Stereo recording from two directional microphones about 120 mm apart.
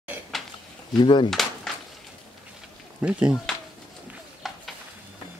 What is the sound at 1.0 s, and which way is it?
Speech, 40° left (ahead or behind).